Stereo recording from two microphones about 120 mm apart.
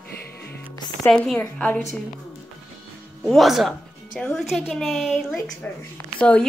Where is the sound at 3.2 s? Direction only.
Centre (ahead or behind).